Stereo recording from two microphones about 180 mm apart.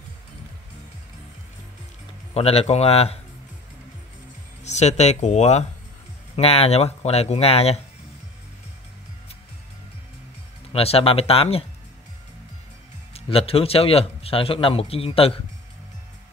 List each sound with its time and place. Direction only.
2.3 s a man's voice: 35° left (ahead or behind)
4.6 s a man's voice: 40° left (ahead or behind)
10.7 s a man's voice: 35° left (ahead or behind)
13.1 s a man's voice: 30° left (ahead or behind)